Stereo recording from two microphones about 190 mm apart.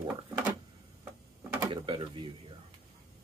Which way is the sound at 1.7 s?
25° right (ahead or behind).